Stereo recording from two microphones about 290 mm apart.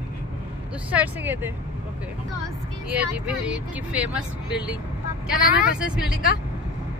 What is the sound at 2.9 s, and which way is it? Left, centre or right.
Speech, centre.